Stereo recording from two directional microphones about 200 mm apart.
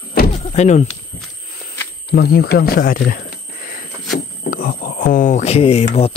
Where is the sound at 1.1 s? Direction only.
50° left (ahead or behind).